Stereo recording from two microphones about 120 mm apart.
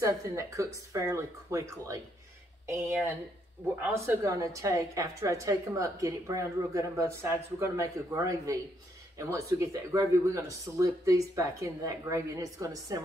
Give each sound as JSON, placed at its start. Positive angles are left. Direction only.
{"t": 0.0, "sound": "a woman's voice", "side_deg": -25}
{"t": 3.8, "sound": "a woman's voice", "side_deg": -20}